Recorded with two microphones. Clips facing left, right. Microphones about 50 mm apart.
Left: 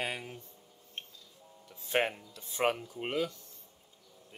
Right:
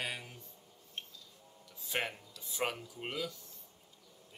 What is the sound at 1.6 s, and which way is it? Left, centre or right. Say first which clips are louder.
Music: left 7 dB; left.